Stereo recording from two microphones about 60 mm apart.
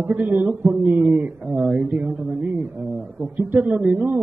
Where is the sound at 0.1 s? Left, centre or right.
Right.